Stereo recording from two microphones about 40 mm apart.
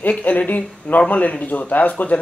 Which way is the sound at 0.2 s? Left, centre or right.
Left.